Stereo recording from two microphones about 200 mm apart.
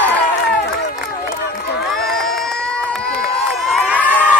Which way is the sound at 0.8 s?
55° left (ahead or behind).